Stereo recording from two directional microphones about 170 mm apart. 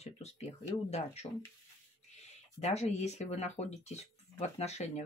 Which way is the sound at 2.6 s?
40° left (ahead or behind).